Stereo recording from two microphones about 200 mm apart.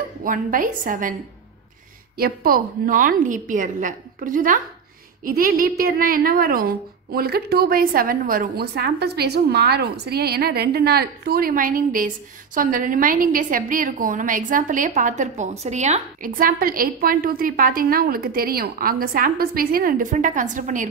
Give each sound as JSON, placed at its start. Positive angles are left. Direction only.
{"t": 0.2, "sound": "a woman's voice", "side_deg": -45}
{"t": 2.1, "sound": "a woman's voice", "side_deg": -50}